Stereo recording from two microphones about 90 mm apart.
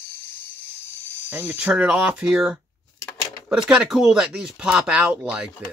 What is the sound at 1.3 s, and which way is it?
Speech, 20° right (ahead or behind).